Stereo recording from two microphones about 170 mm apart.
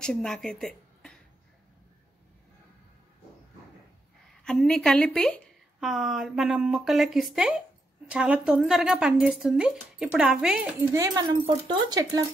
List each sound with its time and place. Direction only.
0.0 s a woman's voice: 5° left (ahead or behind)
4.5 s speech: 5° left (ahead or behind)
11.0 s speech: 25° right (ahead or behind)